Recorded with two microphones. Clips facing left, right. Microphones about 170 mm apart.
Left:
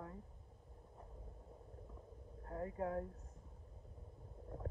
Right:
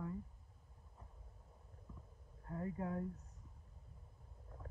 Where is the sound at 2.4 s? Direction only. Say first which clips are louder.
Left 1 dB; 30° left (ahead or behind).